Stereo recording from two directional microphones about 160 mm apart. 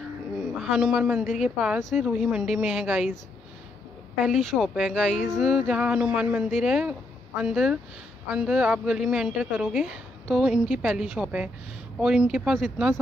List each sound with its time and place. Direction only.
0.6 s a woman's voice: 5° right (ahead or behind)
4.2 s a woman's voice: centre (ahead or behind)